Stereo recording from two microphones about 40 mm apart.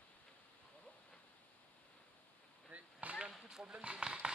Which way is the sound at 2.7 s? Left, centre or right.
Right.